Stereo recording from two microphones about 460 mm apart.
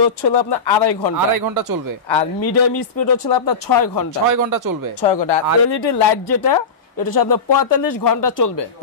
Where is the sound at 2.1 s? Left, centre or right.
Left.